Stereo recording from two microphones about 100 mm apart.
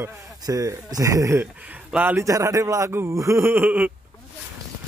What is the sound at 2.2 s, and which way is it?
Speech, 30° right (ahead or behind).